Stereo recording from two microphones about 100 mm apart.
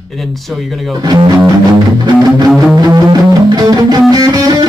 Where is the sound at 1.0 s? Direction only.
40° right (ahead or behind).